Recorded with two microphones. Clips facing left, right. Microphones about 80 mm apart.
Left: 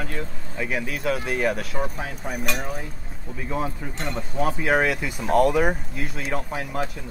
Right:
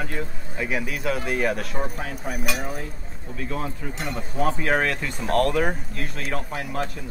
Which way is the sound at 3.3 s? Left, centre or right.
Centre.